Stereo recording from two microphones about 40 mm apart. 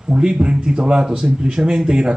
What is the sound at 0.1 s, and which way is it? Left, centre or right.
Speech, right.